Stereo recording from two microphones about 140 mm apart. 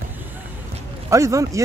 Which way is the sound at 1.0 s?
20° right (ahead or behind).